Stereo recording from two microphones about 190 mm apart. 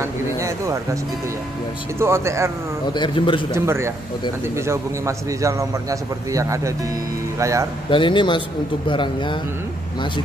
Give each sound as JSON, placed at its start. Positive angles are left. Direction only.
{"t": 0.0, "sound": "speech", "side_deg": -15}
{"t": 2.0, "sound": "a man's voice", "side_deg": -15}
{"t": 2.9, "sound": "speech", "side_deg": 25}
{"t": 3.5, "sound": "a man's voice", "side_deg": -15}
{"t": 7.9, "sound": "speech", "side_deg": 25}